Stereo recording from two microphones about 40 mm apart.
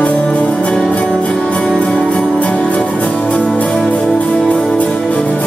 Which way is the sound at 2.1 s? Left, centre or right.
Left.